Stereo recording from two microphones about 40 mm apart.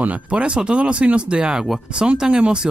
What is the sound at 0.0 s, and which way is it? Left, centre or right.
Speech, right.